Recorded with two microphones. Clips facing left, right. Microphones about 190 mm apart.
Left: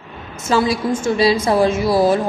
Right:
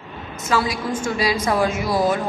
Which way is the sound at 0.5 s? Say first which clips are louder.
Left 5 dB; 25° left (ahead or behind).